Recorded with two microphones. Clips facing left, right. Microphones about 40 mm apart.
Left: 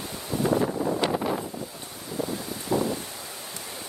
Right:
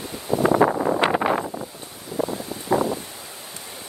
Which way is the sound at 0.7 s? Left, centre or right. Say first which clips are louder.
Right 5 dB; right.